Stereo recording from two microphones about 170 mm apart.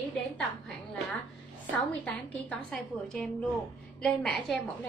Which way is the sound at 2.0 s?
5° left (ahead or behind).